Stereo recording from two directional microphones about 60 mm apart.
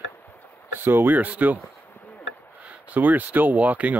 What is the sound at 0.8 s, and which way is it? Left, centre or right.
Speech, right.